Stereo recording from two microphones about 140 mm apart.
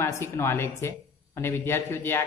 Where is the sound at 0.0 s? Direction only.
20° left (ahead or behind).